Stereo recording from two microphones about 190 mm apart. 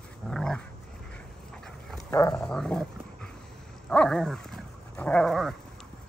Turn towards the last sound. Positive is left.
turn(degrees=0)  # may be behind; listen again after turning